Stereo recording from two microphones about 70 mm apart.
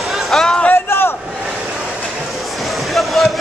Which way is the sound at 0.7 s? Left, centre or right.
Left.